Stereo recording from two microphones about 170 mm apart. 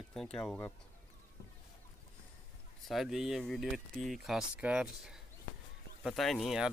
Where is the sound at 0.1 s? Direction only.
5° left (ahead or behind).